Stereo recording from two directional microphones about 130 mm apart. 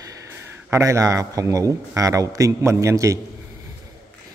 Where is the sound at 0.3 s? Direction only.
20° right (ahead or behind).